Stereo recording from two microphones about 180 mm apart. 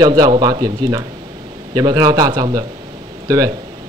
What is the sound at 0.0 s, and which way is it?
Speech, 25° right (ahead or behind).